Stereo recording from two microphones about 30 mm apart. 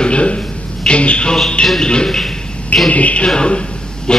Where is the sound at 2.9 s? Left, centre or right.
Left.